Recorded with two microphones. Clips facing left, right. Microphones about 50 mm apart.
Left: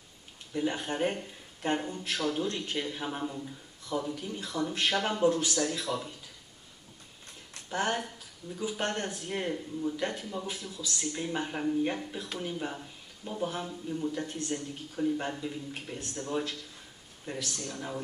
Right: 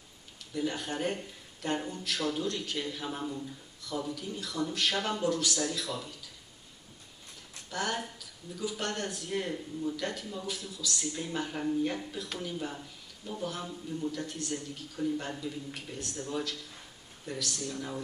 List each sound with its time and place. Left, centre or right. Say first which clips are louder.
0.5 s speech: left 2 dB; left
7.7 s speech: left 3 dB; left